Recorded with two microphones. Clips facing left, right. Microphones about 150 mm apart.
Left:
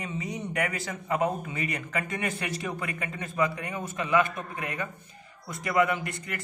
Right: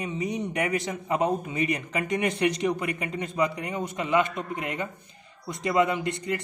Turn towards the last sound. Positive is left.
turn(degrees=-20)  # may be behind; listen again after turning